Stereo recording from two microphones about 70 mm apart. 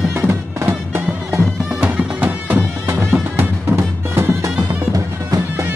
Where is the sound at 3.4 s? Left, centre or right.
Right.